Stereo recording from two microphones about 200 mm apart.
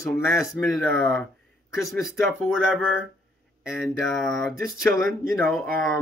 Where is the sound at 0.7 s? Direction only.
Centre (ahead or behind).